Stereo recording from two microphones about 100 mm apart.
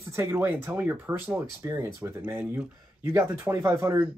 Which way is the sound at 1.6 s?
25° right (ahead or behind).